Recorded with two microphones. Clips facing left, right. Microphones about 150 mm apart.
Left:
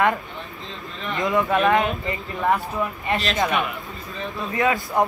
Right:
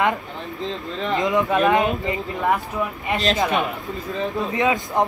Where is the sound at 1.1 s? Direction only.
20° right (ahead or behind).